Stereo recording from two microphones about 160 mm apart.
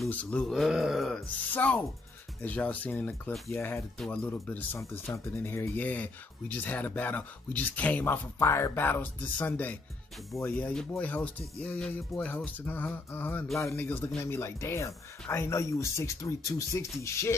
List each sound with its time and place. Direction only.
0.1 s speech: 10° left (ahead or behind)
1.5 s speech: 10° left (ahead or behind)
4.0 s speech: 5° left (ahead or behind)